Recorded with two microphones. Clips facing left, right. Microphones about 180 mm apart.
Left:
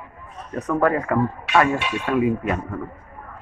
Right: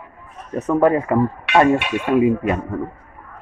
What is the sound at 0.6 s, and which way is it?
Speech, 25° right (ahead or behind).